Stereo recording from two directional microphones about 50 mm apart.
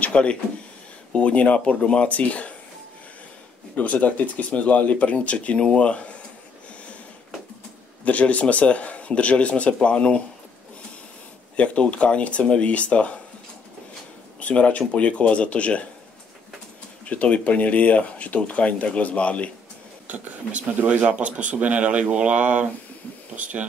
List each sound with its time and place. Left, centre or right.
0.0 s speech: left
3.7 s speech: left
8.0 s speech: left
11.5 s speech: left
14.4 s speech: left
17.0 s speech: left
20.8 s speech: right